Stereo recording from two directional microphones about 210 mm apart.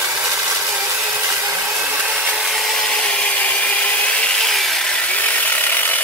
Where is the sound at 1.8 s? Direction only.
5° right (ahead or behind).